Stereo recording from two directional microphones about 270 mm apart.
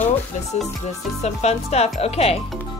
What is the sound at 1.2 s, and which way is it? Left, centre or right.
Speech, left.